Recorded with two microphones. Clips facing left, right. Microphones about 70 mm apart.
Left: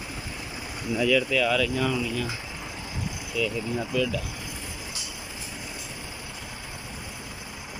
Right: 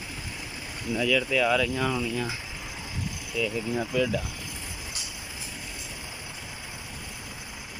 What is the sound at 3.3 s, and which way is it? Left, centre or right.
Speech, right.